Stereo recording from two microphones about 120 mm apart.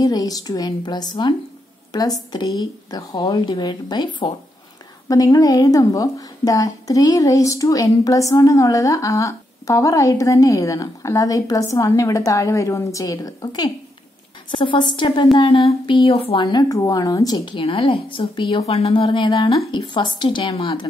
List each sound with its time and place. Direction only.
0.0 s a woman's voice: 30° left (ahead or behind); by 16.4 s 50° left (ahead or behind)
16.4 s a woman's voice: 35° left (ahead or behind)
17.6 s a woman's voice: 50° left (ahead or behind)